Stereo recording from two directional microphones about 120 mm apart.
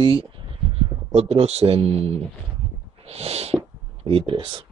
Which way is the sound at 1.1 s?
60° right (ahead or behind).